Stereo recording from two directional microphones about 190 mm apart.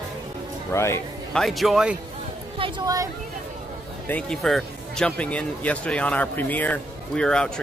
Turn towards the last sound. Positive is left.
turn(degrees=5)  # may be behind; listen again after turning